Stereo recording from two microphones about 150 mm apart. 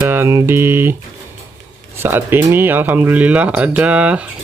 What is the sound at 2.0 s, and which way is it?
Speech, 15° right (ahead or behind).